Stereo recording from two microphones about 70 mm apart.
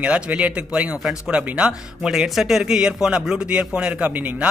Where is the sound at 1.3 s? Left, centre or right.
Centre.